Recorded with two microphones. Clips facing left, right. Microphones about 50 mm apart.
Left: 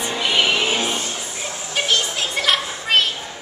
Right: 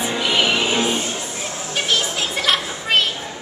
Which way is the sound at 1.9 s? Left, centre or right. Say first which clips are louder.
Right 1 dB; centre.